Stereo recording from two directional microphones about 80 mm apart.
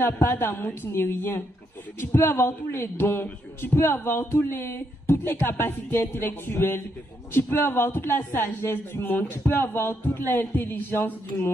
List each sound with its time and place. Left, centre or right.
0.0 s a man's voice: left